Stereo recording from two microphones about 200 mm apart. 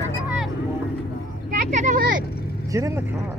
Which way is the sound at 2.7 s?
15° right (ahead or behind).